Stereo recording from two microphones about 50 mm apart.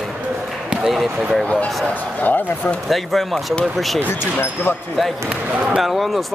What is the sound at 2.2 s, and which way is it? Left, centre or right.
Speech, left.